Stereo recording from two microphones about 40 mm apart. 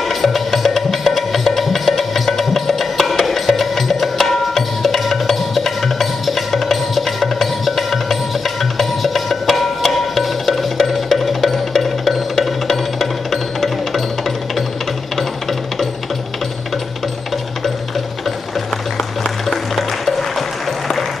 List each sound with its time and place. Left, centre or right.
0.0 s music: centre
19.4 s music: centre